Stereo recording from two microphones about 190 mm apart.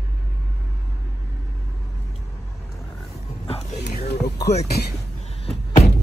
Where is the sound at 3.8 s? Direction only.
60° left (ahead or behind).